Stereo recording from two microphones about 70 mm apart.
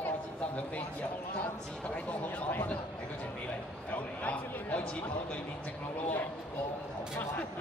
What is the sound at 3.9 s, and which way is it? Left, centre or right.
Speech, left.